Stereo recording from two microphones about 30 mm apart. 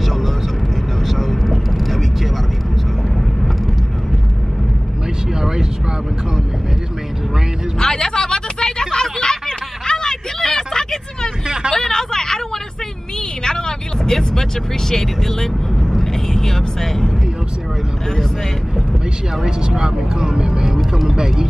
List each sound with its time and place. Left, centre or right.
0.0 s vehicle: centre
5.3 s a sound: centre
7.8 s a sound: left
10.4 s vehicle: centre
11.4 s hubbub: right
11.7 s a sound: centre
13.4 s vehicle: left
14.9 s speech: centre
16.0 s vehicle: centre
19.4 s speech: right